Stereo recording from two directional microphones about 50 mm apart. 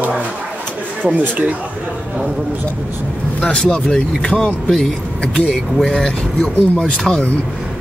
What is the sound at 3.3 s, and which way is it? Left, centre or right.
Speech, centre.